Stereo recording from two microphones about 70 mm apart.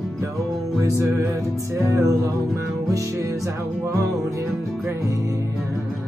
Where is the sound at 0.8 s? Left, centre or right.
Right.